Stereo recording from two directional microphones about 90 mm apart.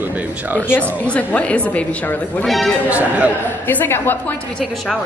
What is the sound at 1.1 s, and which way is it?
A woman's voice, 15° left (ahead or behind).